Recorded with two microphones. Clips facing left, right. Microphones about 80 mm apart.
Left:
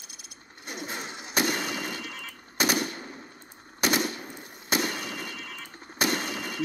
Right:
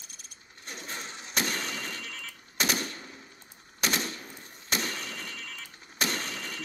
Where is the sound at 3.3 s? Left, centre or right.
Centre.